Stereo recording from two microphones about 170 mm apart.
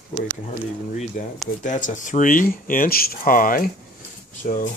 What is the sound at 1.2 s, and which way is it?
Speech, 55° left (ahead or behind).